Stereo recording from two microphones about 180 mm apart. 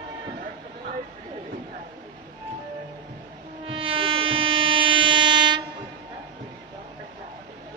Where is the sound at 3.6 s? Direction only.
30° right (ahead or behind).